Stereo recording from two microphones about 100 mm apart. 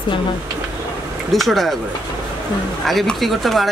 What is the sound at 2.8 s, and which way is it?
Speech, centre (ahead or behind).